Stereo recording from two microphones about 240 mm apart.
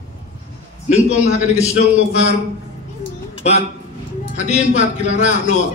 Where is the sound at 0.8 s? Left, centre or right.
Left.